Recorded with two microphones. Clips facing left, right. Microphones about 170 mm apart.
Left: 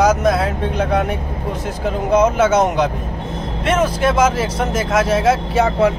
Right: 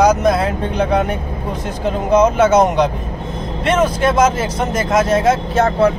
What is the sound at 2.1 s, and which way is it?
Speech, 5° left (ahead or behind).